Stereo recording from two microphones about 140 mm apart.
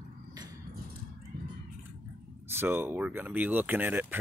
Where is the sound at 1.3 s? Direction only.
90° right.